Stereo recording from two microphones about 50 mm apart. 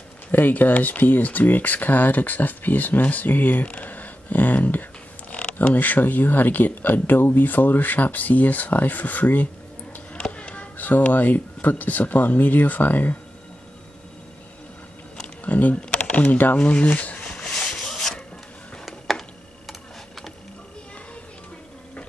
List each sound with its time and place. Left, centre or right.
0.3 s speech: left
5.3 s speech: left
10.1 s speech: left
15.2 s a sound: left; by 19.2 s centre